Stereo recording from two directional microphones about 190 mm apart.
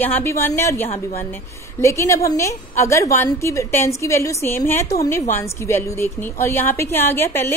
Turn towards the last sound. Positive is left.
turn(degrees=10)  # may be behind; listen again after turning